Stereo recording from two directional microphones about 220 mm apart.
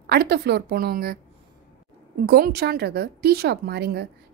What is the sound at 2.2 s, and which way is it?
A woman's voice, 45° right (ahead or behind).